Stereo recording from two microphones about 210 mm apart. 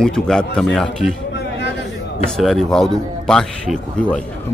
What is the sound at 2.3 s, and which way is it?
Speech, centre (ahead or behind).